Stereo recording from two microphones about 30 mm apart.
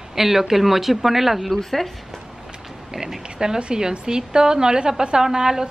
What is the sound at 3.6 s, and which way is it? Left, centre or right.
A woman's voice, right.